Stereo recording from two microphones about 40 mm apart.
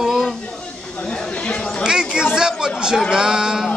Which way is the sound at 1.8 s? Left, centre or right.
Centre.